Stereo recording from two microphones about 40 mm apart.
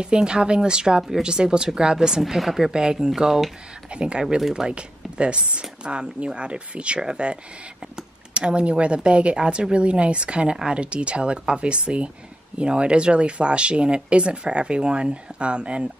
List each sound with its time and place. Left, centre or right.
0.0 s speech: right; by 2.7 s centre
2.7 s speech: centre